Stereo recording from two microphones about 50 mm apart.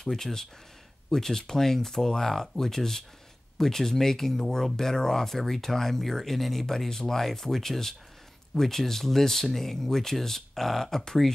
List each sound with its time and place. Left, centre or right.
0.0 s speech: centre